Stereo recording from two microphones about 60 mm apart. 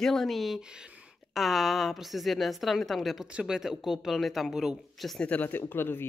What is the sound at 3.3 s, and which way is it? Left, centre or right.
Speech, centre.